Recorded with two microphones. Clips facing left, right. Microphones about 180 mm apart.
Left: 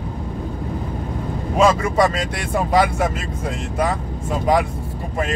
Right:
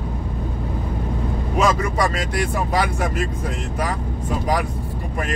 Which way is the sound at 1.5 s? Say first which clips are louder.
Left 4 dB; 25° left (ahead or behind).